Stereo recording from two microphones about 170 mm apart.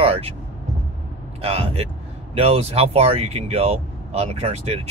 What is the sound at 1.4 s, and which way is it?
Speech, 35° right (ahead or behind).